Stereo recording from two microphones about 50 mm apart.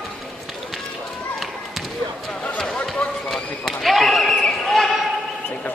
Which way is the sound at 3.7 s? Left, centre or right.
Centre.